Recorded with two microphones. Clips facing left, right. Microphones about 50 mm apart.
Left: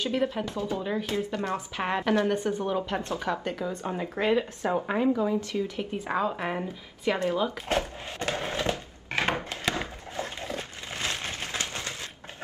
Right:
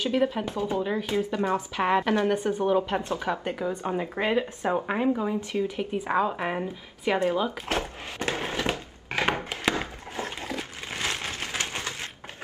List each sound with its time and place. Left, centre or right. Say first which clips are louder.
0.0 s speech: right 3 dB; centre
0.5 s speech: right 3 dB; right
0.8 s speech: right 2 dB; centre
2.2 s speech: right 3 dB; right
7.7 s a sound: left 1 dB; right
9.2 s wood: right 2 dB; right
10.5 s a sound: right 2 dB; right